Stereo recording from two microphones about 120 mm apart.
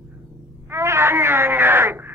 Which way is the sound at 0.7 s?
20° right (ahead or behind).